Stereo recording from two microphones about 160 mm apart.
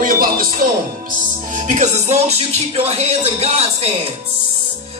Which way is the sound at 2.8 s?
40° right (ahead or behind).